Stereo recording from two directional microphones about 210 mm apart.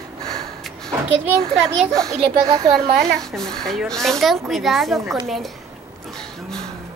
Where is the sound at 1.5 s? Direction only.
Centre (ahead or behind).